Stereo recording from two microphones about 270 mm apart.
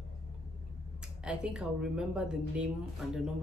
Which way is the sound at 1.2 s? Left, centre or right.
Centre.